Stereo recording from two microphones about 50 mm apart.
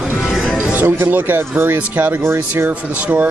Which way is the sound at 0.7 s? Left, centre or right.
Right.